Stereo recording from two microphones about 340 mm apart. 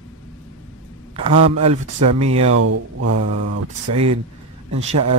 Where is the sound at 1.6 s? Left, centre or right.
Centre.